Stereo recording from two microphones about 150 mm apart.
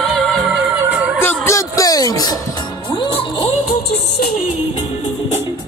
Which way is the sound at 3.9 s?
90° left.